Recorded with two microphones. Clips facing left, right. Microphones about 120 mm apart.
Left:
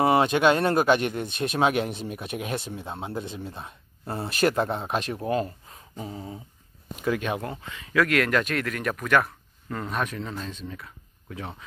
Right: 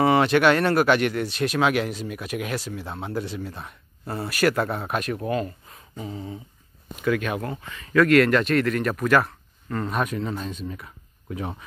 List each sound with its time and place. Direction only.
0.1 s speech: 25° left (ahead or behind)
5.3 s a sound: 35° left (ahead or behind)
7.1 s speech: 25° left (ahead or behind)
7.9 s speech: centre (ahead or behind)
8.9 s a sound: centre (ahead or behind)
9.8 s speech: 5° right (ahead or behind)